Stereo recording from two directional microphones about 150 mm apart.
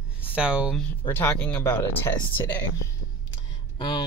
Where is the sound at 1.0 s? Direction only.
10° left (ahead or behind).